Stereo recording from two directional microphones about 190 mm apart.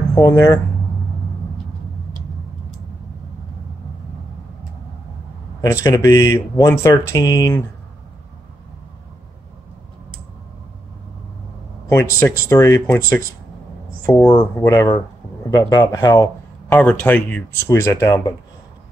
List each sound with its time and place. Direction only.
0.1 s speech: 20° left (ahead or behind)
5.6 s speech: 15° left (ahead or behind)
11.9 s speech: 15° left (ahead or behind)